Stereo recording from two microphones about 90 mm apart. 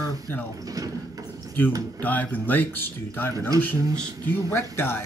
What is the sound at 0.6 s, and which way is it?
Speech, 40° right (ahead or behind).